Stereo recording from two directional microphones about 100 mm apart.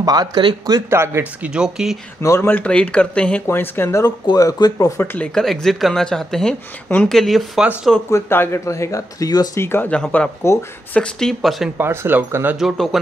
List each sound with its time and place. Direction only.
0.0 s speech: 40° right (ahead or behind)
0.7 s speech: 25° right (ahead or behind)
1.4 s speech: 10° right (ahead or behind)
2.2 s speech: 30° left (ahead or behind)
2.5 s speech: 10° left (ahead or behind)
3.4 s speech: 20° left (ahead or behind)
4.0 s speech: 35° left (ahead or behind)
5.2 s speech: 5° left (ahead or behind)
8.1 s speech: 25° left (ahead or behind)
9.6 s speech: 25° left (ahead or behind)
9.8 s speech: 10° left (ahead or behind)
11.8 s speech: 25° right (ahead or behind)
12.5 s speech: centre (ahead or behind)